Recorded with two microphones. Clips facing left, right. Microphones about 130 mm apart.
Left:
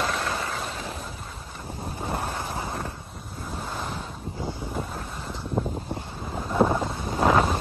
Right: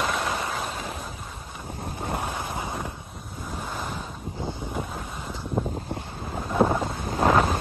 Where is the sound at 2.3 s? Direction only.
15° right (ahead or behind).